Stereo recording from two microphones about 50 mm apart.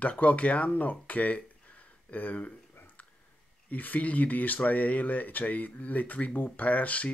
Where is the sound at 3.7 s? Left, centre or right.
Left.